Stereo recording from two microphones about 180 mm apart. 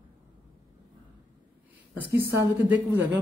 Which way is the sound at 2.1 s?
15° right (ahead or behind).